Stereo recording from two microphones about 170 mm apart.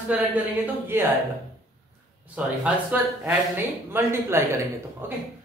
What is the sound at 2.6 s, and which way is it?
Speech, 10° right (ahead or behind).